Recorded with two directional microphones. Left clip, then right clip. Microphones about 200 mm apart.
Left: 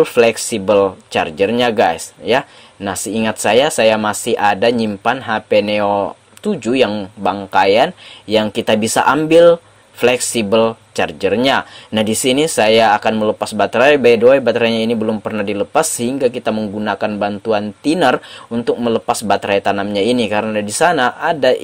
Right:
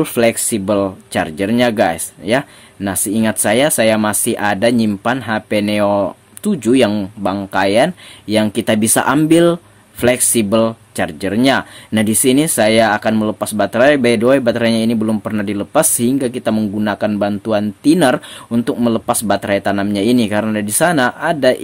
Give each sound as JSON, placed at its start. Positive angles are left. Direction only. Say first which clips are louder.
{"t": 0.0, "sound": "speech", "louder": "left 3 dB", "side_deg": -15}